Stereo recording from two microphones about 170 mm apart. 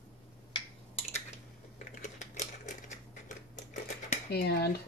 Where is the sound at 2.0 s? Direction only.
45° left (ahead or behind).